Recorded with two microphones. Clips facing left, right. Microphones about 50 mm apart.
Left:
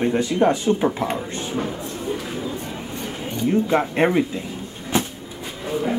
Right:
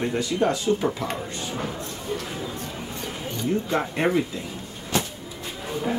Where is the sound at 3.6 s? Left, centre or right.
Left.